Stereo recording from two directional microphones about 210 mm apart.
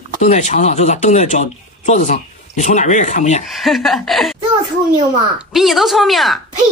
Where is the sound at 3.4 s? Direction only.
Centre (ahead or behind).